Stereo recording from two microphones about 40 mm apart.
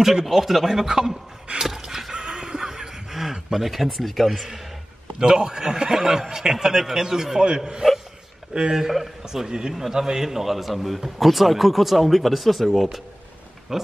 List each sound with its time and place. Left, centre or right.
0.0 s speech: centre
1.6 s a sound: centre
2.1 s a sound: centre
5.2 s speech: centre
8.5 s a man's voice: right
9.2 s a man's voice: centre